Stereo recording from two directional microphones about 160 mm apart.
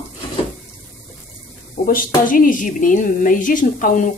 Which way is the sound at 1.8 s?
60° left (ahead or behind).